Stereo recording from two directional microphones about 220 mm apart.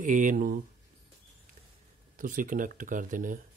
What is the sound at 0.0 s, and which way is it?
Speech, 35° right (ahead or behind).